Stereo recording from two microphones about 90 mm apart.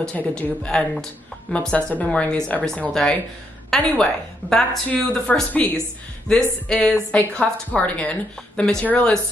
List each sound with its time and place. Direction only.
0.0 s a woman's voice: 15° left (ahead or behind)